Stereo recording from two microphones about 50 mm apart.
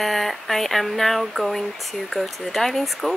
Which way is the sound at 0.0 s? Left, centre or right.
Centre.